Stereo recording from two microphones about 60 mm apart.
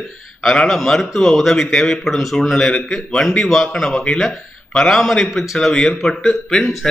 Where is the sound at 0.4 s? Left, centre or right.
Centre.